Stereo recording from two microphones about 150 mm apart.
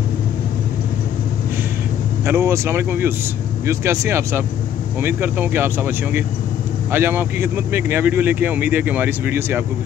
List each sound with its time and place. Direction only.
2.2 s speech: 20° right (ahead or behind)